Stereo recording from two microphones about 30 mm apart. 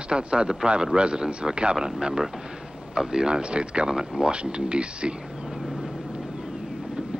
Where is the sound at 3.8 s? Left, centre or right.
Right.